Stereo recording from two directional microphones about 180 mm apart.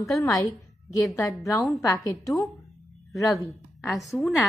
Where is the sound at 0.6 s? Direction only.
20° left (ahead or behind).